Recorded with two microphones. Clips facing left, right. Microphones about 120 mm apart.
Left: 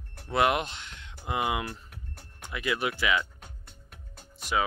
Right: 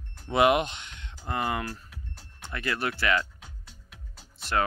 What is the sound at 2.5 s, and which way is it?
Speech, 10° left (ahead or behind).